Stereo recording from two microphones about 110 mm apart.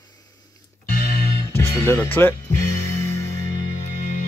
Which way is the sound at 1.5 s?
20° left (ahead or behind).